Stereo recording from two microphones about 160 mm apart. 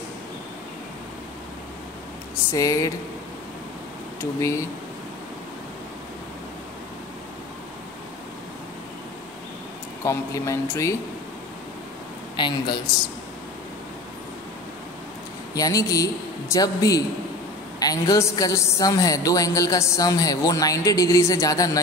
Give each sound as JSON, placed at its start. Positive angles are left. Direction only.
{"t": 2.5, "sound": "a woman's voice", "side_deg": 20}
{"t": 4.4, "sound": "a woman's voice", "side_deg": 20}
{"t": 10.0, "sound": "a woman's voice", "side_deg": 20}
{"t": 12.4, "sound": "a woman's voice", "side_deg": 30}
{"t": 15.5, "sound": "a woman's voice", "side_deg": 20}